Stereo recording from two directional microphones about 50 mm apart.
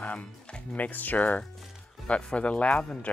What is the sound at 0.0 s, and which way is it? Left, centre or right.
Speech, left.